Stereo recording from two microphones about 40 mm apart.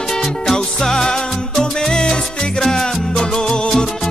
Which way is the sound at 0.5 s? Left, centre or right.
Centre.